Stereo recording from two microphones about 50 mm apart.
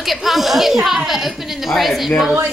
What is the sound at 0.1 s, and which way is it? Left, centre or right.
Speech, centre.